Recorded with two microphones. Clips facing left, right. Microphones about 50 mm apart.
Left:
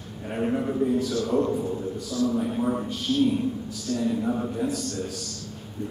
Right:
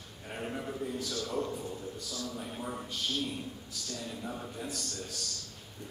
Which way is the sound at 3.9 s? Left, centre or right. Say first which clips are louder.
Left 15 dB; centre.